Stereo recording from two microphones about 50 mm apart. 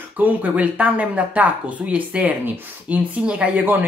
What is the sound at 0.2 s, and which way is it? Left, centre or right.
Speech, right.